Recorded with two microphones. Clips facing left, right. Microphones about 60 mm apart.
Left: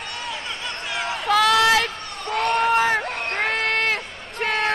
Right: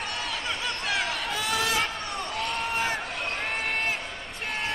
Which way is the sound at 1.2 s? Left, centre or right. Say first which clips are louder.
Left 11 dB; left.